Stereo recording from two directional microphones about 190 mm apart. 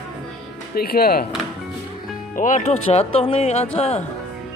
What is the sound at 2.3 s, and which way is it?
Speech, 40° left (ahead or behind).